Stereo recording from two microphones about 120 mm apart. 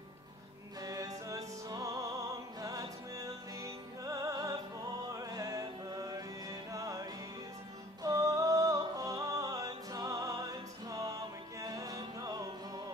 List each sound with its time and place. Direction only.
0.7 s music: 30° right (ahead or behind)